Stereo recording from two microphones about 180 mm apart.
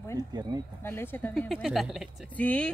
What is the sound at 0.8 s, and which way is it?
Speech, 10° left (ahead or behind).